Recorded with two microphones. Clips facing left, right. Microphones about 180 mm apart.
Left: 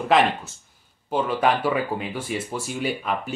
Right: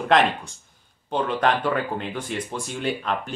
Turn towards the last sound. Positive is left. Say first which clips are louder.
# even
turn(degrees=5)  # may be behind; listen again after turning